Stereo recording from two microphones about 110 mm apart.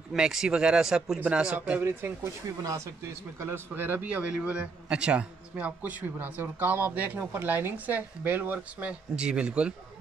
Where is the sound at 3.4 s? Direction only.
20° right (ahead or behind).